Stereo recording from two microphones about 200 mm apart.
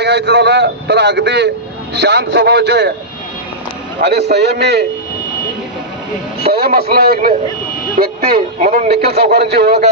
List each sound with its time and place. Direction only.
0.0 s a man's voice: 60° right (ahead or behind)
4.0 s a man's voice: 55° right (ahead or behind)
6.4 s speech: 50° right (ahead or behind)